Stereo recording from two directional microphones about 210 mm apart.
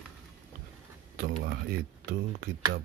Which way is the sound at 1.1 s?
50° right (ahead or behind).